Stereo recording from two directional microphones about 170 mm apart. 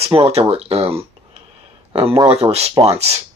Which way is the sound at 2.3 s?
40° right (ahead or behind).